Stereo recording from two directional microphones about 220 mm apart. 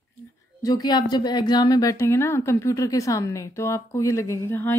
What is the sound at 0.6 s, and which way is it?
Speech, 15° left (ahead or behind).